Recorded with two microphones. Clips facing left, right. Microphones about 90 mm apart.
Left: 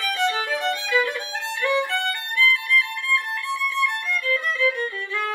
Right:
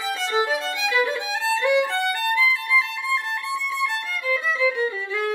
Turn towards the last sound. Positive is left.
turn(degrees=-15)  # may be behind; listen again after turning